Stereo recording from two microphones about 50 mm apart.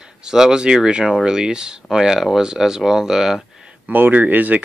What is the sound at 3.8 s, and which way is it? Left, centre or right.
Speech, right.